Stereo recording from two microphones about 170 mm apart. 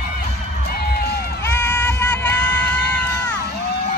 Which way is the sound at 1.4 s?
15° left (ahead or behind).